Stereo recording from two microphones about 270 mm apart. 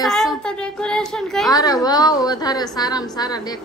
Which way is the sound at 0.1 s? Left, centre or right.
Centre.